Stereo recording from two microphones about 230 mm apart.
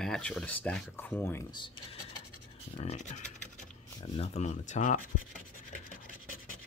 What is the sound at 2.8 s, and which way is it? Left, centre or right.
Speech, left.